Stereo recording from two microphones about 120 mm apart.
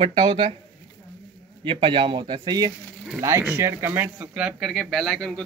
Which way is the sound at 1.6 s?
45° right (ahead or behind).